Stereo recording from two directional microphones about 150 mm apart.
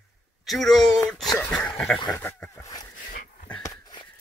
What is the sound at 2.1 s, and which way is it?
Dog, 15° left (ahead or behind).